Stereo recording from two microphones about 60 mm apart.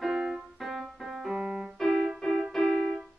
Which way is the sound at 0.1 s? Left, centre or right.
Centre.